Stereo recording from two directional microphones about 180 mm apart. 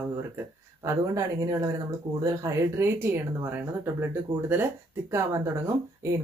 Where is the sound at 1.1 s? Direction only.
20° right (ahead or behind).